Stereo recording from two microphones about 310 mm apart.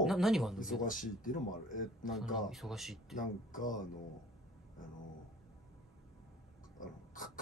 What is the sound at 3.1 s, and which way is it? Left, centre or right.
Speech, left.